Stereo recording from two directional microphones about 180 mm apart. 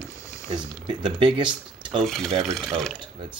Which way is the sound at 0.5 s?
25° right (ahead or behind).